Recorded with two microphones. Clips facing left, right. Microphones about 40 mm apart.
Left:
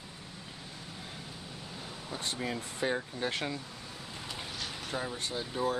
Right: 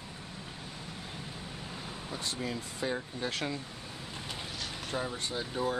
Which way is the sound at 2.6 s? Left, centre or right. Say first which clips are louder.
Left 2 dB; left.